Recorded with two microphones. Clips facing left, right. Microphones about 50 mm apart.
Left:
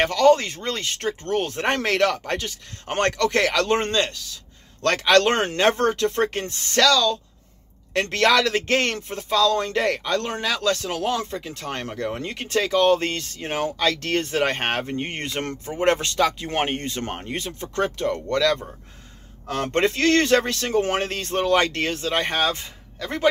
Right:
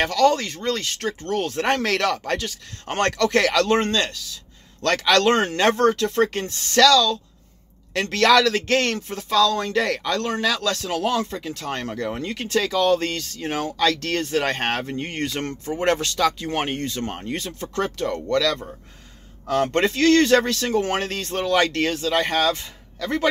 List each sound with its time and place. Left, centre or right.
0.0 s speech: left
5.6 s speech: centre
11.9 s speech: centre
12.2 s speech: centre
19.7 s speech: left